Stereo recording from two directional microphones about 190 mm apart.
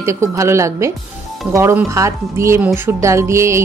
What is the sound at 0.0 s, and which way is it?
Speech, 15° right (ahead or behind).